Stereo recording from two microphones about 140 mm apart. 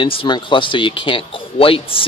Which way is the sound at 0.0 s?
35° left (ahead or behind).